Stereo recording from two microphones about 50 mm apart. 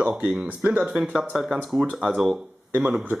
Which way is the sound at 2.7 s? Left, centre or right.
Right.